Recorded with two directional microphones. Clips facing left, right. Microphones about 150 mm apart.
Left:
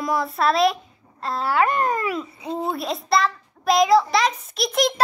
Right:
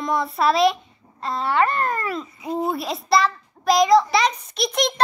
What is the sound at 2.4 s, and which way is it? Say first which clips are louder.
Speech: right 4 dB; 25° left (ahead or behind).